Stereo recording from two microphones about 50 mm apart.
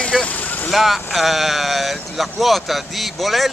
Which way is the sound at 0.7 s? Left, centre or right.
Centre.